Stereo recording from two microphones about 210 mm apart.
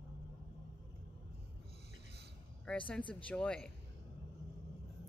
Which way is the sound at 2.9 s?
5° left (ahead or behind).